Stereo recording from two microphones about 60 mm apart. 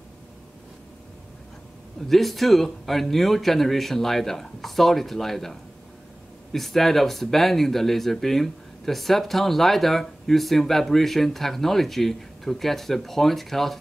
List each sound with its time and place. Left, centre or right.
2.0 s speech: centre